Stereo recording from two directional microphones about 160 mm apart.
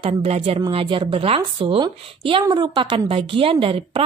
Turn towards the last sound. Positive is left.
turn(degrees=-35)  # may be behind; listen again after turning